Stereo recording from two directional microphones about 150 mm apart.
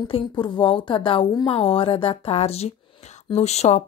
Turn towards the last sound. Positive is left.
turn(degrees=50)  # may be behind; listen again after turning